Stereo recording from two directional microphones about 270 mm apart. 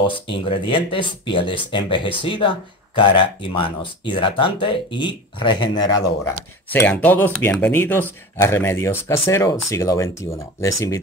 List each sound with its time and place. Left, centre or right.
0.1 s speech: centre